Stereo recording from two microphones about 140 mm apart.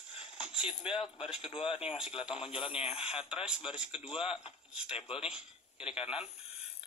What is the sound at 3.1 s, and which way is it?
Speech, 5° right (ahead or behind).